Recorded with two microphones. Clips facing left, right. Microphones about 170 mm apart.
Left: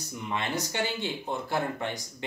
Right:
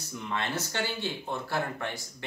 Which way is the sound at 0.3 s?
15° left (ahead or behind).